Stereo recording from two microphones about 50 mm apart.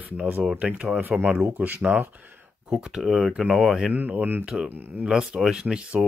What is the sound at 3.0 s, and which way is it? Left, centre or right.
Speech, centre.